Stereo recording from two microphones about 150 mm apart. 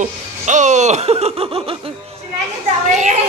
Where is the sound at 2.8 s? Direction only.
55° right (ahead or behind).